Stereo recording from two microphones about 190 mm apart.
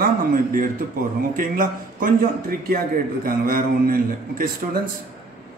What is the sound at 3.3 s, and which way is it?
A man's voice, 50° right (ahead or behind).